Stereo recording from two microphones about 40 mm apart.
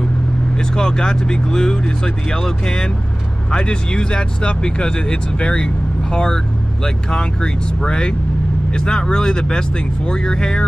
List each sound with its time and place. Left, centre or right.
0.6 s speech: centre